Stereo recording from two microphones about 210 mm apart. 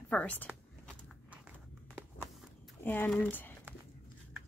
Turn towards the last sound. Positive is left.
turn(degrees=10)  # may be behind; listen again after turning